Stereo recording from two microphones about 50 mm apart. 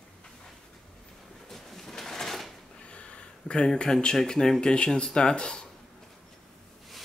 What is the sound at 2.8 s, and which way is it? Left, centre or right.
Speech, left.